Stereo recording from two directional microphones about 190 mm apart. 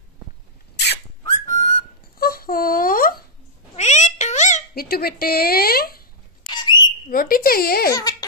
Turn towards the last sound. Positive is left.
turn(degrees=55)  # may be behind; listen again after turning